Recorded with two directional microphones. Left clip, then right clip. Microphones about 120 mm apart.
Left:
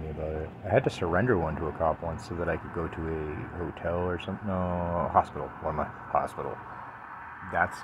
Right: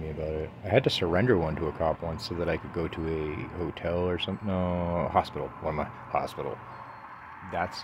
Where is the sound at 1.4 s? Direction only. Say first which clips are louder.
Even; 50° right (ahead or behind).